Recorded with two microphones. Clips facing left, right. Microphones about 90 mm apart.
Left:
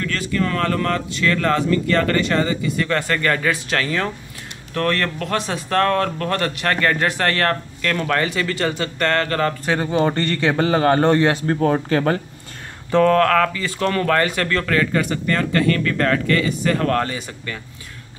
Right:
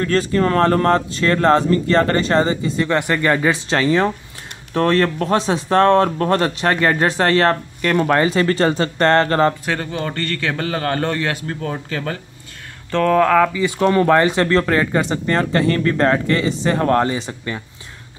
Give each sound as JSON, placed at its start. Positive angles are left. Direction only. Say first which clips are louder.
{"t": 0.0, "sound": "speech", "louder": "right 5 dB", "side_deg": -35}
{"t": 9.9, "sound": "a man's voice", "louder": "left 5 dB", "side_deg": 25}
{"t": 11.4, "sound": "speech", "louder": "left 7 dB", "side_deg": 40}
{"t": 13.1, "sound": "speech", "louder": "right 2 dB", "side_deg": -10}